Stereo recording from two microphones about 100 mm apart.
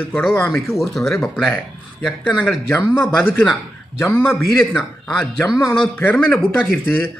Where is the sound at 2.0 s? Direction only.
15° left (ahead or behind).